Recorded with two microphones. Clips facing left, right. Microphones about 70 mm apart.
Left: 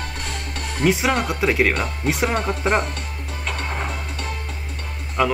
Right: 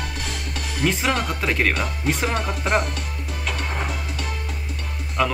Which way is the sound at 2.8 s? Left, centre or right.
Left.